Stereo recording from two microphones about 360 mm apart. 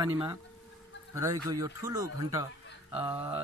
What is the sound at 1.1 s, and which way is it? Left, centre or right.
Speech, centre.